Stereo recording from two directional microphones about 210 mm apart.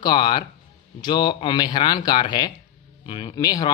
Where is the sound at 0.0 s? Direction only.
20° left (ahead or behind).